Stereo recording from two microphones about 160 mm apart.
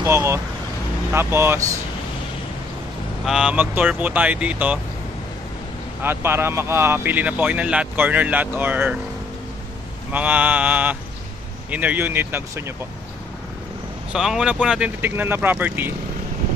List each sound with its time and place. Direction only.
0.0 s speech: 15° right (ahead or behind)
3.3 s speech: 5° right (ahead or behind)
6.0 s speech: 15° right (ahead or behind)
10.1 s speech: 10° right (ahead or behind)
14.1 s speech: 5° right (ahead or behind)